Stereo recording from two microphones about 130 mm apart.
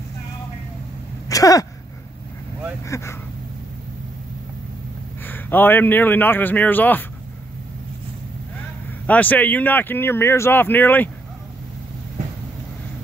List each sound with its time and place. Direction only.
1.3 s a sound: 25° left (ahead or behind)
2.9 s speech: 20° left (ahead or behind)
5.2 s speech: 15° left (ahead or behind)
9.0 s speech: 10° left (ahead or behind)